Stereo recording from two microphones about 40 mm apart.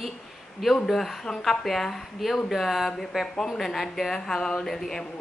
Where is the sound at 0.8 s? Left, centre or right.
Centre.